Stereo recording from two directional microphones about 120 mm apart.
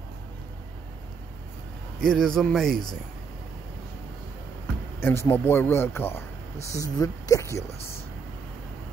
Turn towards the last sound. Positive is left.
turn(degrees=30)  # may be behind; listen again after turning